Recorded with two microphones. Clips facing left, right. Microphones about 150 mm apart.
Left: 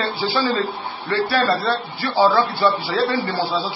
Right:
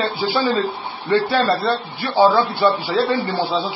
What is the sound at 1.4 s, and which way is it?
Speech, centre (ahead or behind).